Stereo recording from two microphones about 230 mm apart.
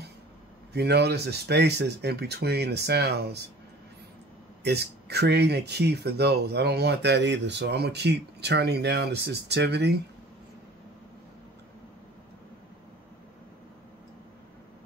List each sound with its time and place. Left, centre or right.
0.7 s speech: right
4.6 s speech: right